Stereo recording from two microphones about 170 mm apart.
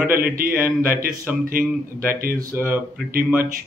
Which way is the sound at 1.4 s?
55° right (ahead or behind).